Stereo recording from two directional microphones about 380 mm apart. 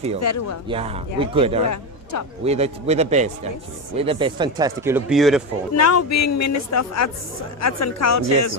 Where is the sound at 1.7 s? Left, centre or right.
Left.